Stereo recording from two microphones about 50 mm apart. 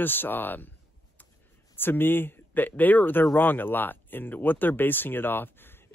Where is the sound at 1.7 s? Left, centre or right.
Left.